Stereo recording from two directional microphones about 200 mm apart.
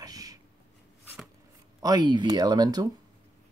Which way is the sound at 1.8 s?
20° right (ahead or behind).